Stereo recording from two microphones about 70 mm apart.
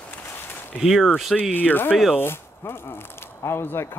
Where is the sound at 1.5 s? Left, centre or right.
Left.